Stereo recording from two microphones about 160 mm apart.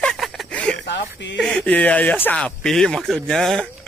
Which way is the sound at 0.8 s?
90° left.